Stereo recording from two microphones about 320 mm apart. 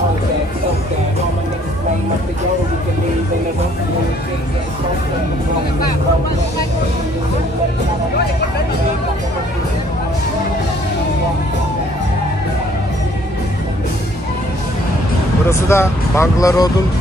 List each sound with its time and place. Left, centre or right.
15.4 s vehicle: centre